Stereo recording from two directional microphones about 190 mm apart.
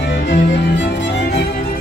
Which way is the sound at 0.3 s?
70° left (ahead or behind).